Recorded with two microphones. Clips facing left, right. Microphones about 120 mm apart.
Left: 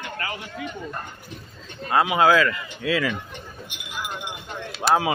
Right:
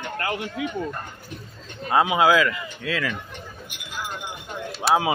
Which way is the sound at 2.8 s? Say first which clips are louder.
Left 4 dB; 10° left (ahead or behind).